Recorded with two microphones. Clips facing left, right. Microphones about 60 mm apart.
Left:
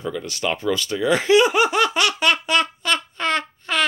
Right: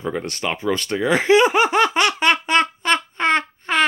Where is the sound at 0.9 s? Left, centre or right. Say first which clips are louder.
Right 1 dB; right.